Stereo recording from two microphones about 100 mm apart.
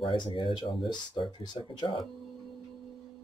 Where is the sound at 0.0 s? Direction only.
55° left (ahead or behind).